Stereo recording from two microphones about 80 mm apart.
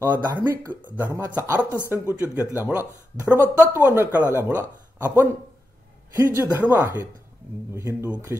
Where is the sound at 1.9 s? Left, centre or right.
Right.